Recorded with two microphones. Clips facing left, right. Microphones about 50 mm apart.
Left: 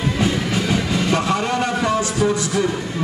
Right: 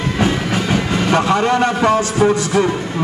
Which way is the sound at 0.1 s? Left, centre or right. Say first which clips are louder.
Right 4 dB; right.